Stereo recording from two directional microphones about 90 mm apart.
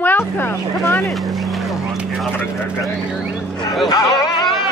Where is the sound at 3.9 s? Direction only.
40° left (ahead or behind).